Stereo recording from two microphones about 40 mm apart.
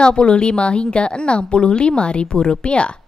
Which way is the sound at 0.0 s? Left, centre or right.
Left.